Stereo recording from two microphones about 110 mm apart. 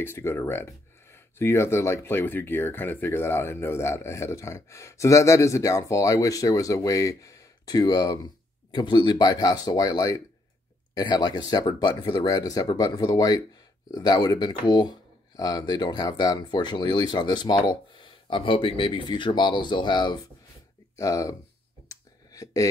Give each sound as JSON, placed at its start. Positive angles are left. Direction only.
{"t": 0.0, "sound": "speech", "side_deg": 20}
{"t": 20.9, "sound": "speech", "side_deg": 30}
{"t": 21.8, "sound": "a sound", "side_deg": 30}